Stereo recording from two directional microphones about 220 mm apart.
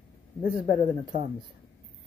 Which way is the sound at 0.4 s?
40° left (ahead or behind).